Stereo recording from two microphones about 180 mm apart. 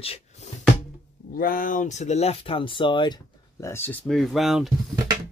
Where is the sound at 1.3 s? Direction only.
50° left (ahead or behind); by 4.7 s centre (ahead or behind).